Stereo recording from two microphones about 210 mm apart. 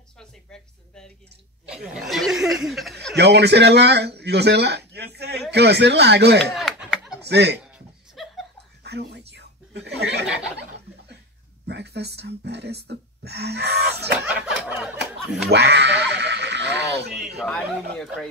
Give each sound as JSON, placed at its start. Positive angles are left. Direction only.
{"t": 0.2, "sound": "speech", "side_deg": 5}
{"t": 3.2, "sound": "speech", "side_deg": -55}
{"t": 6.5, "sound": "a sound", "side_deg": 0}
{"t": 7.2, "sound": "speech", "side_deg": -50}
{"t": 8.2, "sound": "laughter", "side_deg": 0}
{"t": 8.8, "sound": "whispering", "side_deg": -50}
{"t": 9.3, "sound": "a sound", "side_deg": -55}
{"t": 10.2, "sound": "a sound", "side_deg": -5}
{"t": 11.6, "sound": "speech", "side_deg": -50}
{"t": 14.2, "sound": "snicker", "side_deg": -5}
{"t": 15.5, "sound": "speech", "side_deg": -55}
{"t": 16.1, "sound": "music", "side_deg": -50}
{"t": 17.4, "sound": "speech", "side_deg": 0}